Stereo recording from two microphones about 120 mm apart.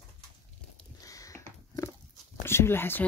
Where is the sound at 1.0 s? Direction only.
30° left (ahead or behind).